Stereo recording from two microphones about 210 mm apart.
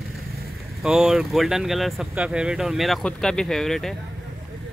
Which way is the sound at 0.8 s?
Centre (ahead or behind).